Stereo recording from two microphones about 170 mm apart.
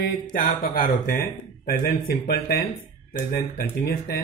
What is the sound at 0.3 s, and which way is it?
Speech, 55° left (ahead or behind).